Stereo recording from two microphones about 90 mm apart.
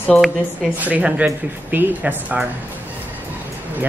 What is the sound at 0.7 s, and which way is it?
Speech, 15° right (ahead or behind).